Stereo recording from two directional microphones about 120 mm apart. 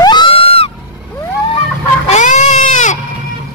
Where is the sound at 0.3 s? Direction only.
50° left (ahead or behind).